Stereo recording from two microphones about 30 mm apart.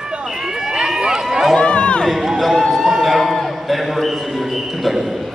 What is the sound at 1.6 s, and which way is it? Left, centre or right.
Run, left.